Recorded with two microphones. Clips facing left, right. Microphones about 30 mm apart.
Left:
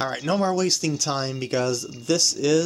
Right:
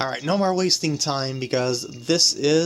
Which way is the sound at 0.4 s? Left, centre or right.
Right.